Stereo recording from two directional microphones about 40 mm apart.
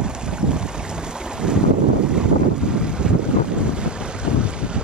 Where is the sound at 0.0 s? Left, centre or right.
Right.